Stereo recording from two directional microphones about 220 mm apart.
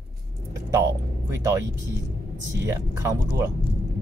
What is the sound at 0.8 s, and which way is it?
Speech, 15° right (ahead or behind).